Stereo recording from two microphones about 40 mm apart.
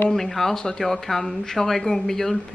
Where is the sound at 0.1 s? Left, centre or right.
Centre.